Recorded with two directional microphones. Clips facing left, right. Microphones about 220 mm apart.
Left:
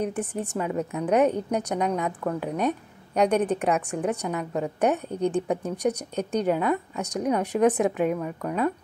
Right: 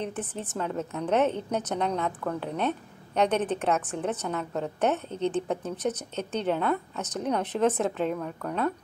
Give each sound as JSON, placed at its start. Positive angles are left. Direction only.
{"t": 0.4, "sound": "a woman's voice", "side_deg": 10}